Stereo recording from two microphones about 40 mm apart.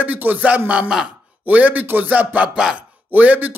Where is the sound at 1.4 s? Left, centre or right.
Right.